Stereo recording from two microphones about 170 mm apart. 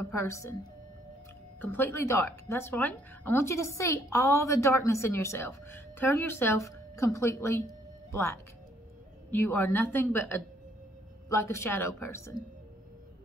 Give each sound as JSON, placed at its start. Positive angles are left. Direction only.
{"t": 0.1, "sound": "a woman's voice", "side_deg": 15}
{"t": 1.6, "sound": "a woman's voice", "side_deg": 10}